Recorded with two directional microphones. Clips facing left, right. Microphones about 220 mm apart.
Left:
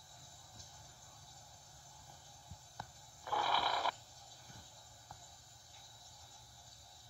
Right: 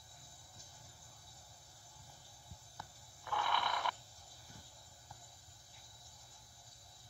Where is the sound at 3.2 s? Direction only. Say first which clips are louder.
Left 1 dB; 35° left (ahead or behind).